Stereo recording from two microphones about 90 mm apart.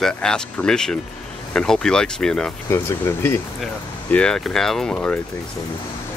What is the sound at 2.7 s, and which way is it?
Speech, 30° left (ahead or behind).